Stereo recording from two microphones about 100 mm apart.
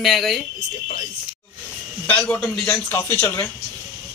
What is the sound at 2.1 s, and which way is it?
A man's voice, 15° left (ahead or behind).